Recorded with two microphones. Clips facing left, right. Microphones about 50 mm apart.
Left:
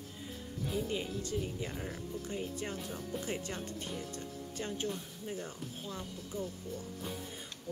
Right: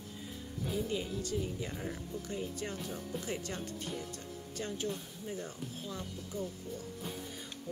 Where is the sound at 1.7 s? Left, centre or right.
Centre.